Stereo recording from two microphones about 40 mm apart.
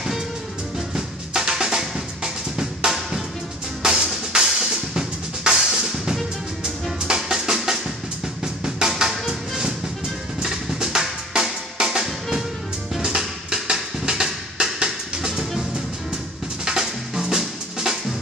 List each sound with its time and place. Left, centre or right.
0.7 s drum: centre
3.8 s music: right
4.3 s drum kit: centre
7.2 s music: centre
10.4 s drum: centre
13.2 s music: centre
16.6 s drum: centre